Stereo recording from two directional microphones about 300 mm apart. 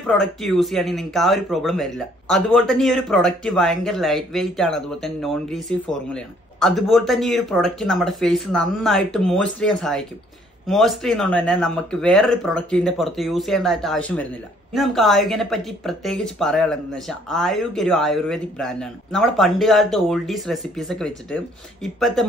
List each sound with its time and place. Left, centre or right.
0.0 s speech: centre